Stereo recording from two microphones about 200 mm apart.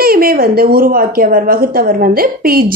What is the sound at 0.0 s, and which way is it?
A woman's voice, 50° right (ahead or behind).